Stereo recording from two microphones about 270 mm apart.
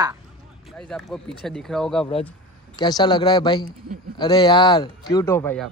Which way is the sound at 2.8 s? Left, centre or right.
Centre.